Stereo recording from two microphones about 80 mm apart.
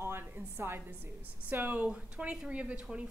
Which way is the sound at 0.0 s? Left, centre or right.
Right.